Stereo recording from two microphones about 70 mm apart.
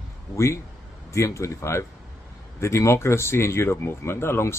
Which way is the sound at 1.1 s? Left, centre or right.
Left.